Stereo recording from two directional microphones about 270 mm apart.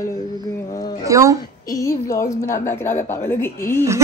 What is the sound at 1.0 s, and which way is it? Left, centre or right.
Speech, centre.